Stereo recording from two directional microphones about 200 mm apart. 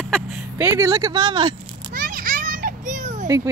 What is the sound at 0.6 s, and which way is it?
Speech, 15° right (ahead or behind).